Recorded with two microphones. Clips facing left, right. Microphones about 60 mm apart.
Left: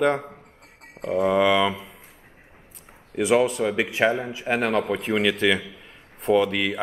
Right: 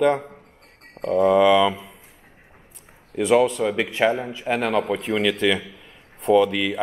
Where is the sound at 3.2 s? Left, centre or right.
Centre.